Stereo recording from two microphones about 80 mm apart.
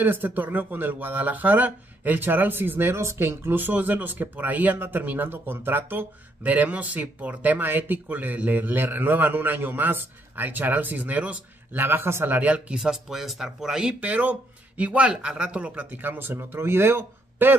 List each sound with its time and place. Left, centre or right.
0.0 s speech: right